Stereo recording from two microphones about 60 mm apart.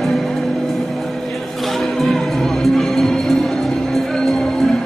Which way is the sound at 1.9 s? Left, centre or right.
Centre.